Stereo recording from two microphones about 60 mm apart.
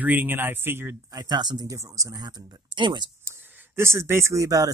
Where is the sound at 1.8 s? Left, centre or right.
Right.